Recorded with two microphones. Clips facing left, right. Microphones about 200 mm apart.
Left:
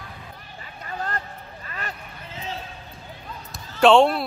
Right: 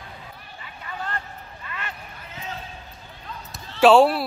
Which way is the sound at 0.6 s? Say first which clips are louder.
Left 2 dB; 40° left (ahead or behind).